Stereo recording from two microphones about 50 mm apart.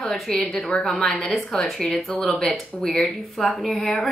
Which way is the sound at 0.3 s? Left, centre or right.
Centre.